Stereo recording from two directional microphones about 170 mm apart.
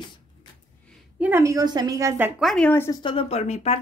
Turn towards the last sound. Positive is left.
turn(degrees=40)  # may be behind; listen again after turning